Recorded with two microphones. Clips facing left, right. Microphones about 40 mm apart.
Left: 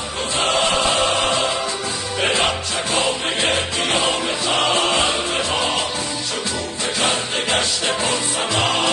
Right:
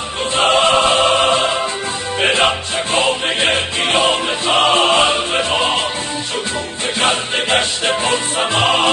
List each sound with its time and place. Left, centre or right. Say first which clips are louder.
0.4 s choir: right 6 dB; right
2.2 s music: right 5 dB; right
7.0 s music: right 5 dB; right